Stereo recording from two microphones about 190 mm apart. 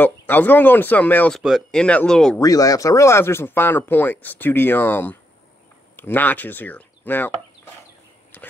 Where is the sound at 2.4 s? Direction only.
20° left (ahead or behind).